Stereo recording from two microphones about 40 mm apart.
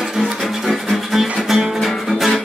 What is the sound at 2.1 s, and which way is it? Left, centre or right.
Music, centre.